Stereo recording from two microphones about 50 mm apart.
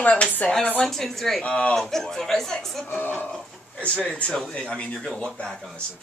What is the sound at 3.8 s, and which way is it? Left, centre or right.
Speech, centre.